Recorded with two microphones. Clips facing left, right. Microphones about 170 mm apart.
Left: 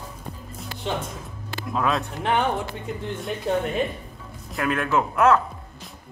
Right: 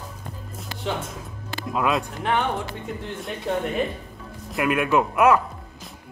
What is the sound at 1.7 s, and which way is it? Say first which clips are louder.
Speech: right 1 dB; 5° right (ahead or behind).